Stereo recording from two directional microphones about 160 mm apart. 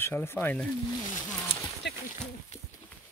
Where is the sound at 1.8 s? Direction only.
90° left.